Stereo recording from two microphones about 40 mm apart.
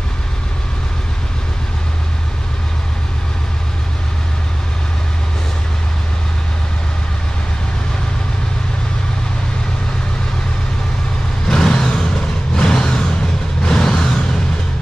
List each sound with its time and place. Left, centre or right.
11.4 s vehicle: centre